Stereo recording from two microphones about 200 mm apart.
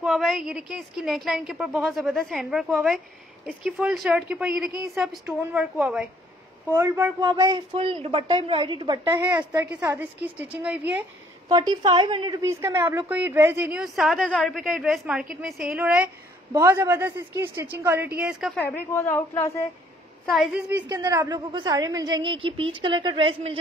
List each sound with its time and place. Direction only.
0.0 s a woman's voice: centre (ahead or behind)
6.7 s a woman's voice: 15° right (ahead or behind)
7.7 s a woman's voice: 30° right (ahead or behind)
9.6 s a woman's voice: 5° right (ahead or behind)
11.5 s a woman's voice: 20° right (ahead or behind)
18.6 s a woman's voice: 10° left (ahead or behind)
20.3 s a woman's voice: 5° right (ahead or behind)
20.8 s a woman's voice: 20° right (ahead or behind)